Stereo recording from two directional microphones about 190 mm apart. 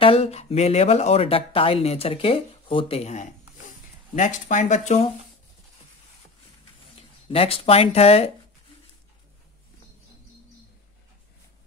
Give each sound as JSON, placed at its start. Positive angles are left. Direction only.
{"t": 0.0, "sound": "speech", "side_deg": 30}
{"t": 7.0, "sound": "speech", "side_deg": 30}